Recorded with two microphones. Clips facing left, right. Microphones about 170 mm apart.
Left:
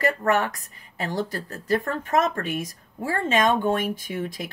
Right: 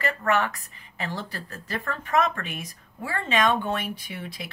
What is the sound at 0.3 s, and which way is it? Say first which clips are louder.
A woman's voice: left 2 dB; 45° left (ahead or behind).